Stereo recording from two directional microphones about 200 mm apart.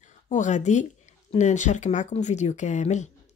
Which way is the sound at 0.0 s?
35° left (ahead or behind).